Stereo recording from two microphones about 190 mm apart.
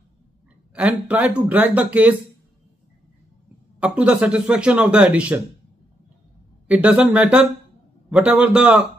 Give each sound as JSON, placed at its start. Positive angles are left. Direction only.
{"t": 0.7, "sound": "speech", "side_deg": -5}
{"t": 3.8, "sound": "speech", "side_deg": -5}
{"t": 6.7, "sound": "speech", "side_deg": -5}